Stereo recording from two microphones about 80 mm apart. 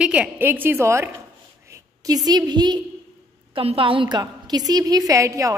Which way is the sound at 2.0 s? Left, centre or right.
Right.